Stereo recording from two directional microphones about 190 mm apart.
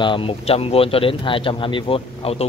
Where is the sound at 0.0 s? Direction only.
25° left (ahead or behind).